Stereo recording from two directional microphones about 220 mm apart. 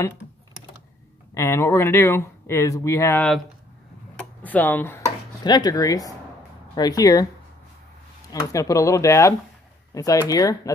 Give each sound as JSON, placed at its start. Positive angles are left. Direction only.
{"t": 1.3, "sound": "speech", "side_deg": 10}
{"t": 8.3, "sound": "speech", "side_deg": 15}